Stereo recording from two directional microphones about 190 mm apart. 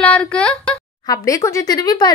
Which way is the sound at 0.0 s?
5° left (ahead or behind).